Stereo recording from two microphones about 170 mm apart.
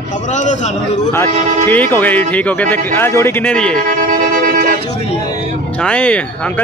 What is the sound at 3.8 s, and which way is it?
Music, 50° right (ahead or behind).